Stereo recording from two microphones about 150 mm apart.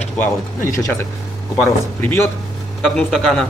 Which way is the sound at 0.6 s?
20° left (ahead or behind).